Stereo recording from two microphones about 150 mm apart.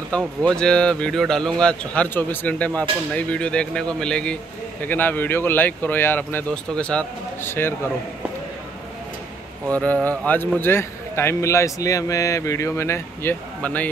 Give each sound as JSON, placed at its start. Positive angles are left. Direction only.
{"t": 0.4, "sound": "a man's voice", "side_deg": 5}
{"t": 10.0, "sound": "a man's voice", "side_deg": 10}